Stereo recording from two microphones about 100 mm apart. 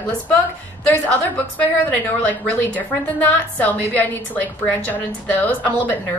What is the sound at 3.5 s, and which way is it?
A woman's voice, 15° left (ahead or behind).